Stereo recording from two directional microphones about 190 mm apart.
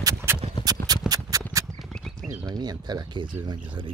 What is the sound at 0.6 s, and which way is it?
Clip-clop, 20° right (ahead or behind).